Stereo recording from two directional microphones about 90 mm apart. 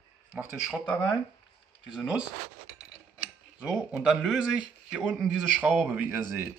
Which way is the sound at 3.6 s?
5° right (ahead or behind).